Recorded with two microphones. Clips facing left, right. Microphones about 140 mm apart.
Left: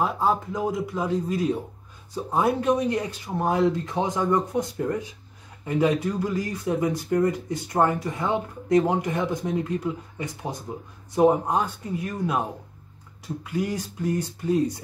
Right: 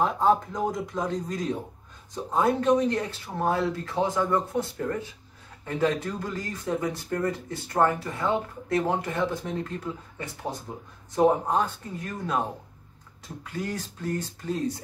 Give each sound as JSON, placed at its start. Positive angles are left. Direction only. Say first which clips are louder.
{"t": 0.0, "sound": "speech", "louder": "right 1 dB", "side_deg": 5}